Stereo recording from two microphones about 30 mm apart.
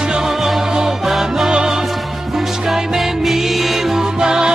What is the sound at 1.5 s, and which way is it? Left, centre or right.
Music, right.